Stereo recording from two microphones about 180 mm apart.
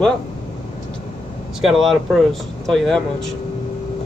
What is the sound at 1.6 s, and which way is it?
Speech, centre (ahead or behind).